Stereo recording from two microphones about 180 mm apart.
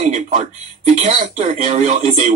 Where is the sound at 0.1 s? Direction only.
45° right (ahead or behind).